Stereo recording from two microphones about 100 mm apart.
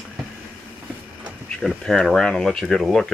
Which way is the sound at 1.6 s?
5° left (ahead or behind).